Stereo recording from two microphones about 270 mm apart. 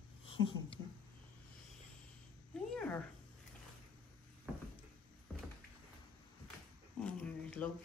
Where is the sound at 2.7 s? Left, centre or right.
Centre.